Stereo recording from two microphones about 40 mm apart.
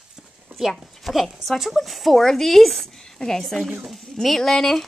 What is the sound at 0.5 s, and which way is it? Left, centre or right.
Sheep, right.